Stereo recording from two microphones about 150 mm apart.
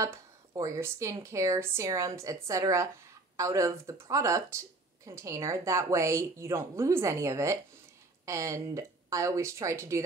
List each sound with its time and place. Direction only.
0.0 s speech: 20° right (ahead or behind)